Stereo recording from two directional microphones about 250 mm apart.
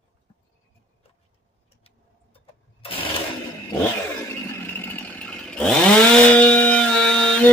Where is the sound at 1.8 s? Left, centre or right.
Left.